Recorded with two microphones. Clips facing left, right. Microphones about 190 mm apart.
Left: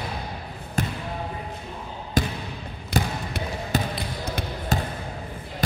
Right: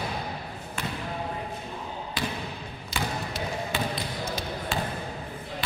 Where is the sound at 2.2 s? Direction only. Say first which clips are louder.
Left 8 dB; 45° left (ahead or behind).